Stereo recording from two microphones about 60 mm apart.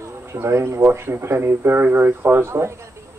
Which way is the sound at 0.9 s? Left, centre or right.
Right.